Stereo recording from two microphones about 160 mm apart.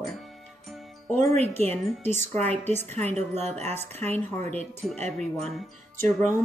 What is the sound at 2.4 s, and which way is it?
A woman's voice, 40° right (ahead or behind).